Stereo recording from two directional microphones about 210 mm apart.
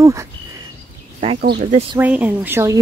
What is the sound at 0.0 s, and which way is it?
Speech, 15° right (ahead or behind).